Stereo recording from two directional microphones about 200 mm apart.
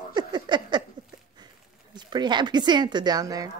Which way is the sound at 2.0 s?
20° right (ahead or behind).